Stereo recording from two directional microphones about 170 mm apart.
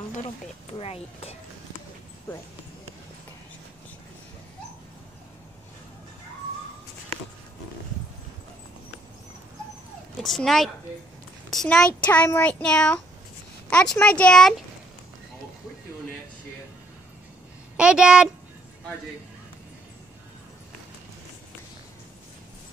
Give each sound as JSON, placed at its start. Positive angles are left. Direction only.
{"t": 0.7, "sound": "speech", "side_deg": 35}
{"t": 10.2, "sound": "a child's voice", "side_deg": 0}
{"t": 17.7, "sound": "speech", "side_deg": -5}